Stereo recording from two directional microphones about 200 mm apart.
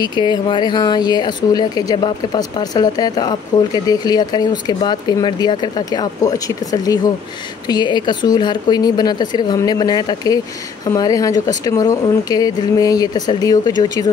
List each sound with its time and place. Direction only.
0.0 s speech: 20° left (ahead or behind)